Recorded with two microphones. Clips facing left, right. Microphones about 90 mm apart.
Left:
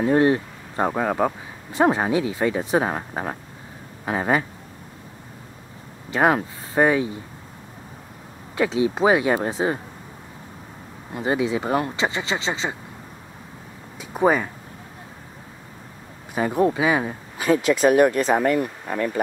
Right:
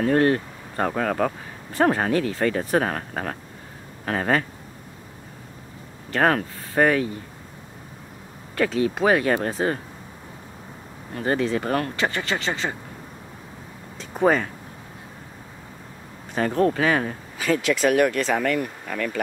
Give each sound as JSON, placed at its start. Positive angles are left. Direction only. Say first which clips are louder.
{"t": 0.0, "sound": "speech", "louder": "left 1 dB", "side_deg": 15}
{"t": 6.0, "sound": "speech", "louder": "left 1 dB", "side_deg": 15}
{"t": 8.5, "sound": "speech", "louder": "left 1 dB", "side_deg": 15}
{"t": 11.1, "sound": "speech", "louder": "left 1 dB", "side_deg": 15}
{"t": 13.9, "sound": "speech", "louder": "left 1 dB", "side_deg": 10}
{"t": 16.3, "sound": "speech", "louder": "left 1 dB", "side_deg": 10}
{"t": 17.4, "sound": "speech", "louder": "left 3 dB", "side_deg": 25}